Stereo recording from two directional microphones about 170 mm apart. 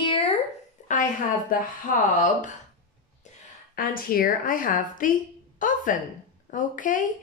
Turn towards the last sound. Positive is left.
turn(degrees=50)  # may be behind; listen again after turning